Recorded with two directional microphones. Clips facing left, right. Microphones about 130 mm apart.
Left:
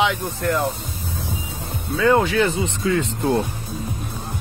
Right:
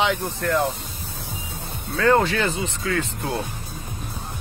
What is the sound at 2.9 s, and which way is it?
Speech, 20° left (ahead or behind).